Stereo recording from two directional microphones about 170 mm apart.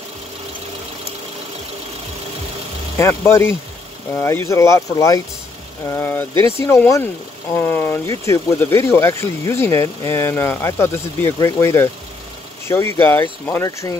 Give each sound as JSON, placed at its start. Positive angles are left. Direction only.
{"t": 3.0, "sound": "speech", "side_deg": 15}